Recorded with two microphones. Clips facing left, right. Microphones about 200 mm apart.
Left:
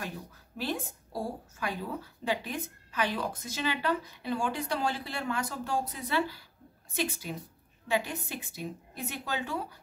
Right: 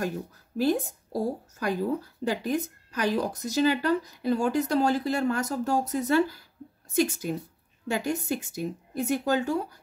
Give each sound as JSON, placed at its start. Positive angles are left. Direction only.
{"t": 0.6, "sound": "speech", "side_deg": -45}